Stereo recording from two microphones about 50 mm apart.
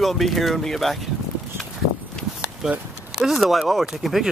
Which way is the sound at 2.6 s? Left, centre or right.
Centre.